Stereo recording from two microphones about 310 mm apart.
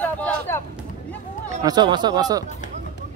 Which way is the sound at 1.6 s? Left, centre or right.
Centre.